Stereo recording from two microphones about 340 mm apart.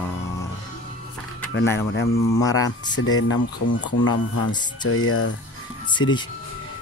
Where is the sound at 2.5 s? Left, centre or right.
Left.